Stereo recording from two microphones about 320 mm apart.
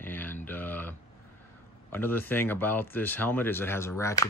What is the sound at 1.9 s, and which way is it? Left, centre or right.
Speech, centre.